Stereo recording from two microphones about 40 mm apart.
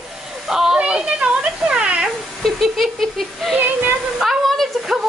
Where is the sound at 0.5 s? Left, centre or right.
Centre.